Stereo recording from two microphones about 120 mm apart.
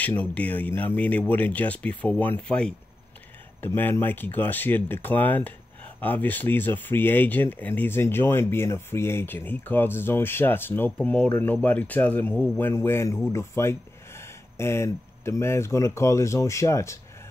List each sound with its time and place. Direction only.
0.0 s speech: 10° left (ahead or behind)